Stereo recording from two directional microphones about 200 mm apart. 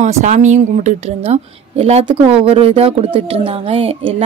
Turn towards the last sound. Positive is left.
turn(degrees=-30)  # may be behind; listen again after turning